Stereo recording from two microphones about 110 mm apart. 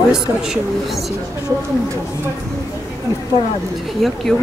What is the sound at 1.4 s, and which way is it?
Speech, 25° right (ahead or behind).